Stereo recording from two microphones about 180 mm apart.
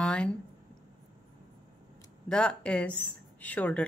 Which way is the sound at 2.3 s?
5° left (ahead or behind).